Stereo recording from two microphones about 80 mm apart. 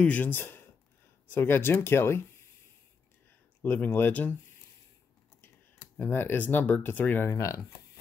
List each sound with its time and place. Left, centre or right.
0.0 s speech: centre
3.6 s speech: left
5.9 s speech: left
7.3 s speech: left